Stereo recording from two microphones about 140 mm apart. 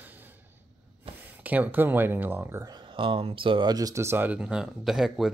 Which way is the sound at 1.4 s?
10° right (ahead or behind).